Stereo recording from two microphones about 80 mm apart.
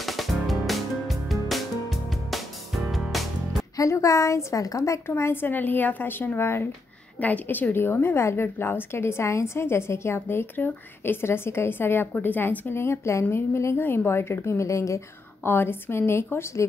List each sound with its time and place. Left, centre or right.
0.0 s music: centre
3.7 s a woman's voice: left
7.2 s a woman's voice: centre; by 13.7 s left
13.7 s a woman's voice: left
15.4 s a woman's voice: left